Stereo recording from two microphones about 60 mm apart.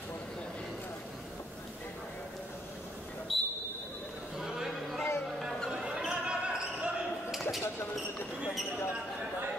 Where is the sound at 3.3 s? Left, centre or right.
Centre.